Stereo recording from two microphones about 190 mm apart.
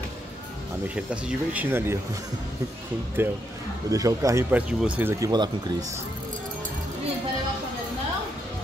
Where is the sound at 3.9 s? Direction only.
15° right (ahead or behind).